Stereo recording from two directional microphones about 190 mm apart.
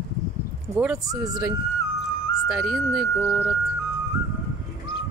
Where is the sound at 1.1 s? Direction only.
20° right (ahead or behind).